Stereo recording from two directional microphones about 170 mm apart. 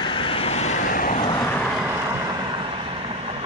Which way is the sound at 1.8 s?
15° right (ahead or behind).